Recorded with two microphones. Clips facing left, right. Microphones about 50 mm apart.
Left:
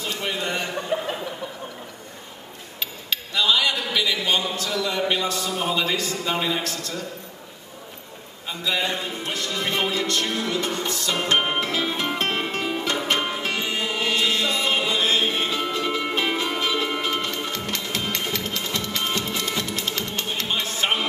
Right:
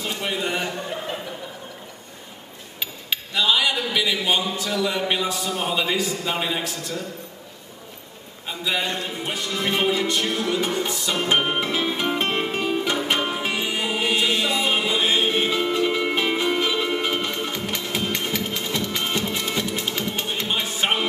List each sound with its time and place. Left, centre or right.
0.0 s a man's voice: centre
0.9 s a sound: centre
2.8 s a sound: centre
8.6 s a man's voice: centre
9.2 s music: centre
11.3 s a man's voice: centre
11.6 s music: centre